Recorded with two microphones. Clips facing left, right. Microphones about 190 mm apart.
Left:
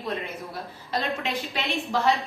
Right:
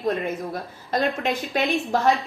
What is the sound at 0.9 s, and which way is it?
A woman's voice, 45° right (ahead or behind).